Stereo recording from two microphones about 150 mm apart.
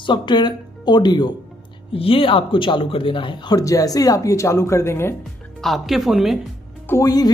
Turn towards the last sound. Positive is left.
turn(degrees=25)  # may be behind; listen again after turning